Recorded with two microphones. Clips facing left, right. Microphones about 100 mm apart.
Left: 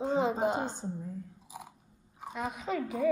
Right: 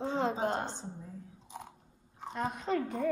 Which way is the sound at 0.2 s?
5° left (ahead or behind).